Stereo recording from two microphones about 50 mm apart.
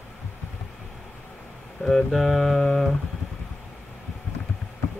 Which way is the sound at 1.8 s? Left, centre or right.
Centre.